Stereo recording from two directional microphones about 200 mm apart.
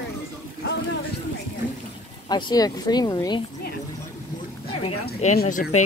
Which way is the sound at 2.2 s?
20° left (ahead or behind).